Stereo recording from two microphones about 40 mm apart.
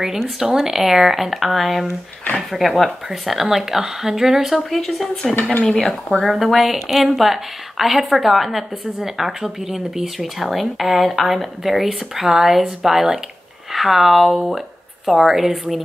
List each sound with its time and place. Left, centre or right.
0.6 s a woman's voice: centre
4.6 s a woman's voice: centre